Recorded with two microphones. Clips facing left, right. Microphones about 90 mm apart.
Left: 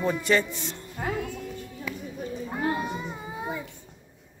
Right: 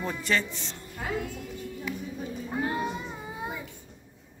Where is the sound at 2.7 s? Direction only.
Centre (ahead or behind).